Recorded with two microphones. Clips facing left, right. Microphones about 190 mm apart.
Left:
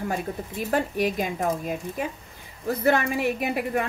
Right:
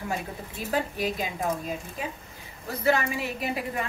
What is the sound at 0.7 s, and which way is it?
A woman's voice, 55° left (ahead or behind).